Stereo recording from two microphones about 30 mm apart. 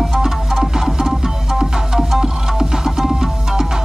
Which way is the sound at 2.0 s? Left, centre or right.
Centre.